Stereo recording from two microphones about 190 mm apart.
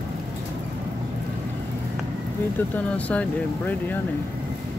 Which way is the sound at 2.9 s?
5° left (ahead or behind).